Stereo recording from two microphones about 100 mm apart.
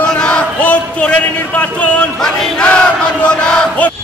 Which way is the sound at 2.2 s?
15° left (ahead or behind).